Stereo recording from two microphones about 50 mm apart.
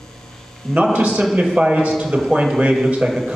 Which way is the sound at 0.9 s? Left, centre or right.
Right.